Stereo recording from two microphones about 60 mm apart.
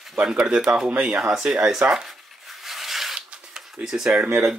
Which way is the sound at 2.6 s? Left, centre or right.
Centre.